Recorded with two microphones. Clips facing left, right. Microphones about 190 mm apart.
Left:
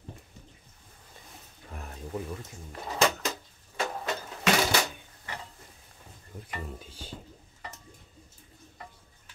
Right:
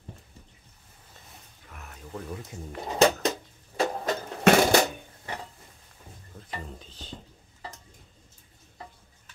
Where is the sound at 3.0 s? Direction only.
35° right (ahead or behind).